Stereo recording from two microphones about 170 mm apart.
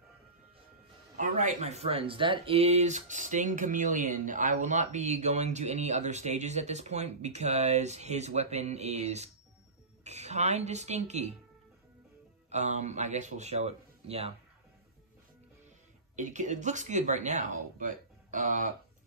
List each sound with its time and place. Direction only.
1.1 s speech: 45° right (ahead or behind)
12.4 s speech: 40° right (ahead or behind)
16.2 s speech: 45° right (ahead or behind)